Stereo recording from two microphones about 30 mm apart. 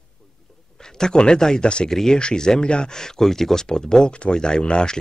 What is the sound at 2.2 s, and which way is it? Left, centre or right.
Speech, left.